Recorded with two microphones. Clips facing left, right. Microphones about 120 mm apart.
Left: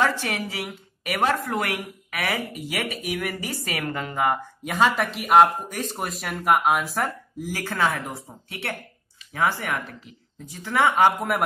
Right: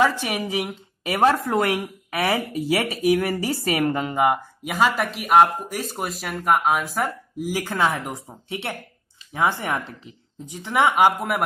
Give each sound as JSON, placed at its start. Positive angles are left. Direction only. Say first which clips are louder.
{"t": 0.0, "sound": "a woman's voice", "louder": "right 3 dB", "side_deg": -15}
{"t": 7.3, "sound": "a woman's voice", "louder": "right 4 dB", "side_deg": -15}